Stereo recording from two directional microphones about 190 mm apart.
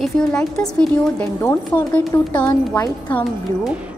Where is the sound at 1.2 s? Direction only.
15° left (ahead or behind).